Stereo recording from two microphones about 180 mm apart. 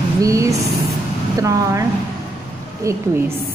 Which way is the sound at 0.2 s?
15° right (ahead or behind).